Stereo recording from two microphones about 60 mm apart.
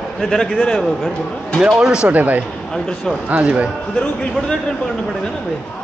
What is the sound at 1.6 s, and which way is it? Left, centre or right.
Speech, centre.